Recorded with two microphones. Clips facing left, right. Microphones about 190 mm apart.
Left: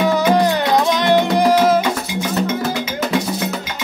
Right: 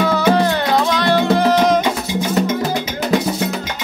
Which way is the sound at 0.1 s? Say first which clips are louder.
Even; 15° left (ahead or behind).